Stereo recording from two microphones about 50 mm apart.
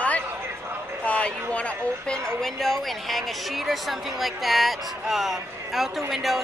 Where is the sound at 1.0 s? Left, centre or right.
Left.